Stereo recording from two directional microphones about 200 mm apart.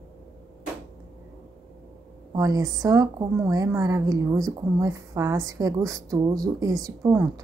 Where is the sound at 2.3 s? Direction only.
20° right (ahead or behind).